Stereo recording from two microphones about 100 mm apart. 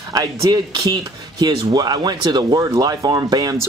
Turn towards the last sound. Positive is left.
turn(degrees=-40)  # may be behind; listen again after turning